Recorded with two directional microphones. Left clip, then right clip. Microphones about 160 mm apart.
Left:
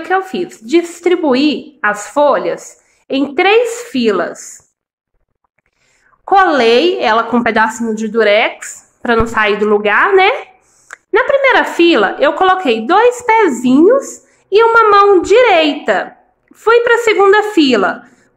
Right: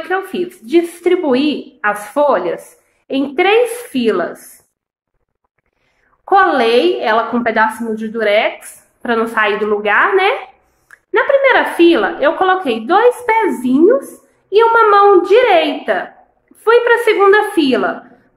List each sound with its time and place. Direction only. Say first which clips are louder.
0.1 s a woman's voice: left 4 dB; 25° left (ahead or behind)
6.2 s a woman's voice: left 2 dB; 30° left (ahead or behind)